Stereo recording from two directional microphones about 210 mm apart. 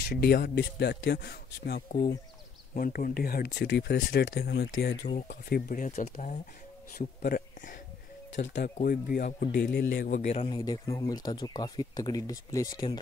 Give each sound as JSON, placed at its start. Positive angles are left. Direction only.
{"t": 0.0, "sound": "a man's voice", "side_deg": 50}
{"t": 5.3, "sound": "a man's voice", "side_deg": 45}
{"t": 10.1, "sound": "speech", "side_deg": 30}